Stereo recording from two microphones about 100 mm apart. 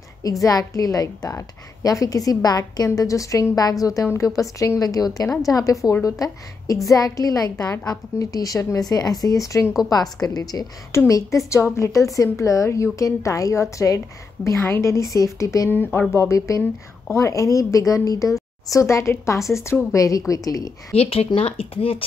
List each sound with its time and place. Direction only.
0.2 s a woman's voice: 35° left (ahead or behind)
15.7 s a woman's voice: 20° left (ahead or behind); by 20.7 s 35° left (ahead or behind)
20.9 s speech: 90° left
21.4 s speech: 70° left (ahead or behind)